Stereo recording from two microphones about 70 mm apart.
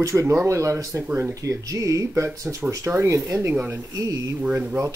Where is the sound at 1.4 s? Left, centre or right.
Right.